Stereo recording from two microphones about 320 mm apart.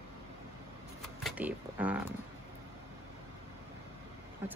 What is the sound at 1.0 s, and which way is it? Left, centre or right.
Speech, centre.